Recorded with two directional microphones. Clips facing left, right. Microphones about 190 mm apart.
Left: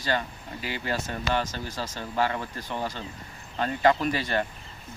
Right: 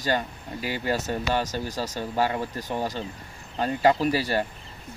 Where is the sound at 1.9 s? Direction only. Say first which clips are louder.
Right 1 dB; 15° right (ahead or behind).